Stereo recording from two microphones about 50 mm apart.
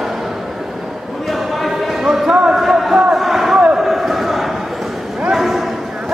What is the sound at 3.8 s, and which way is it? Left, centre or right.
Basketball bounce, centre.